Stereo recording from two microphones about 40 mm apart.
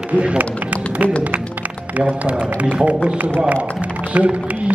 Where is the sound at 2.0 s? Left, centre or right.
Right.